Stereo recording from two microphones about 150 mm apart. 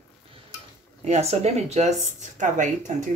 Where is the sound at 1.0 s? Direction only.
45° right (ahead or behind).